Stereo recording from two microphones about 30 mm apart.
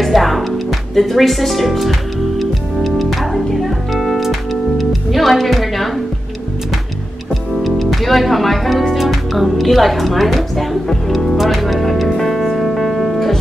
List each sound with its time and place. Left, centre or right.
0.0 s music: centre
7.6 s music: centre
9.1 s speech: centre
11.4 s music: centre